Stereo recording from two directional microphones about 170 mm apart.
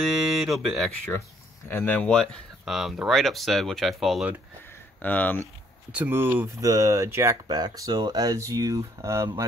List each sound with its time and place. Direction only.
0.3 s speech: centre (ahead or behind)
1.7 s speech: 10° left (ahead or behind); by 4.4 s 5° right (ahead or behind)
5.0 s speech: 10° left (ahead or behind)
5.9 s speech: 10° right (ahead or behind)